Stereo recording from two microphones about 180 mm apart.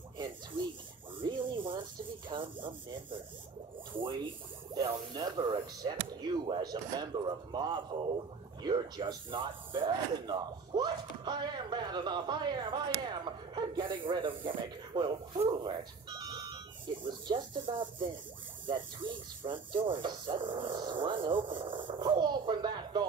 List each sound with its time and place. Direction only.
1.2 s a sound: 25° right (ahead or behind)
2.2 s speech: 30° right (ahead or behind)
16.2 s alarm clock: 25° right (ahead or behind)
17.0 s speech: 25° right (ahead or behind)